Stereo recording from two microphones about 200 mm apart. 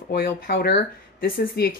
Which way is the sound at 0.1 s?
50° left (ahead or behind).